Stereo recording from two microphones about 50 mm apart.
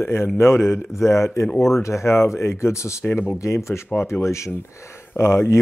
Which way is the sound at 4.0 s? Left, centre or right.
Left.